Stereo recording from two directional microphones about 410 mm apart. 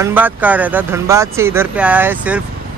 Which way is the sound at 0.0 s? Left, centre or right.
Centre.